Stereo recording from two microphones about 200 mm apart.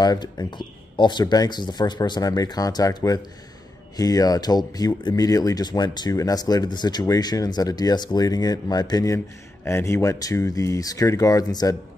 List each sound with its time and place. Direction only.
0.0 s speech: 20° left (ahead or behind)